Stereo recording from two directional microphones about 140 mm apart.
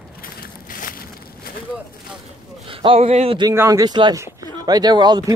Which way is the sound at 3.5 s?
20° right (ahead or behind).